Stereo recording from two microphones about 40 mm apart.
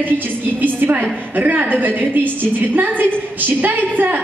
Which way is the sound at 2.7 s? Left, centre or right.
Right.